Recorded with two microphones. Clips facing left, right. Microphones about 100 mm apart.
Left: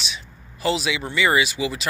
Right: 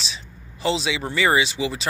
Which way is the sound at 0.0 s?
30° right (ahead or behind).